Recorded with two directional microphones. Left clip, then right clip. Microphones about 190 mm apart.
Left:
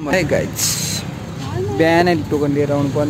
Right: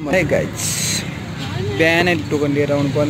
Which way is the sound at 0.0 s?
Centre (ahead or behind).